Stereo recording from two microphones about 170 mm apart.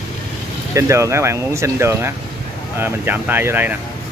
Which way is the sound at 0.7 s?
15° right (ahead or behind).